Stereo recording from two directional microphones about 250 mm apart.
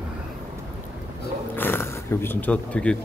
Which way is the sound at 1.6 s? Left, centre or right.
Centre.